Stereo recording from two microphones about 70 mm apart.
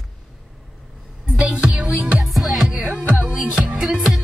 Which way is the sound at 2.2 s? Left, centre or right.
Centre.